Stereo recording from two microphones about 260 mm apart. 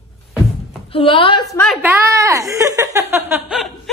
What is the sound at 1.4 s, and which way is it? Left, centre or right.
A woman's voice, centre.